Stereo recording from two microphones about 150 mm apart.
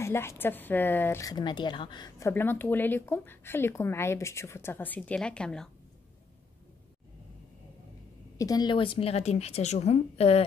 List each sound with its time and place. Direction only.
0.0 s speech: 15° left (ahead or behind)
8.4 s a woman's voice: 25° left (ahead or behind); by 10.4 s 45° left (ahead or behind)